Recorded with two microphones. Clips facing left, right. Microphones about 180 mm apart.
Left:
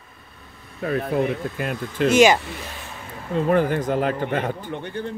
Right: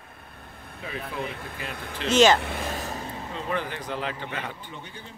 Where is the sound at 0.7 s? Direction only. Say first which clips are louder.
Left 11 dB; 55° left (ahead or behind).